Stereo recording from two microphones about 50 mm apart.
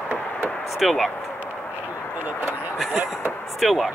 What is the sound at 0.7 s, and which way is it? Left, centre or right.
Speech, centre.